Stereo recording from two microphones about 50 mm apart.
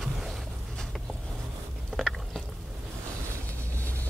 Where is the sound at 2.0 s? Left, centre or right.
Centre.